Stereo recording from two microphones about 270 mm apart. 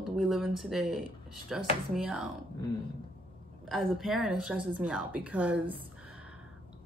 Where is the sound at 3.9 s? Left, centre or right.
Centre.